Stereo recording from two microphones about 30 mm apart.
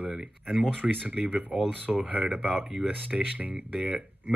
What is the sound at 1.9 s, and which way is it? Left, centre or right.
Speech, right.